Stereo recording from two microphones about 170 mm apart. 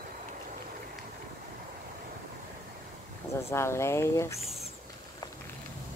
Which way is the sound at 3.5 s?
15° left (ahead or behind).